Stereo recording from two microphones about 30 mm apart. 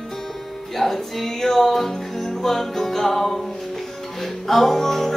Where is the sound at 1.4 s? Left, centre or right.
Centre.